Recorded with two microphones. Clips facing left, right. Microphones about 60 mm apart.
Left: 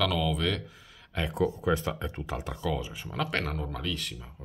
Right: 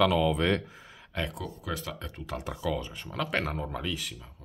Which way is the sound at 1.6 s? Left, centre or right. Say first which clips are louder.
Left 7 dB; left.